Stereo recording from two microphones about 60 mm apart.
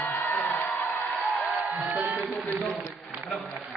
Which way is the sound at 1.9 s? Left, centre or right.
Right.